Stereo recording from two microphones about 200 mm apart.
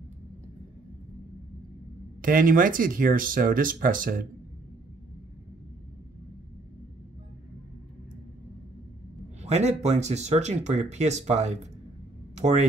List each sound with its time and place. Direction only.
2.2 s speech: 45° right (ahead or behind)
9.4 s speech: 35° right (ahead or behind)